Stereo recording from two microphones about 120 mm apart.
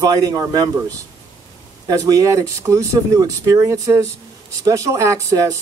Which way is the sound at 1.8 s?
30° right (ahead or behind).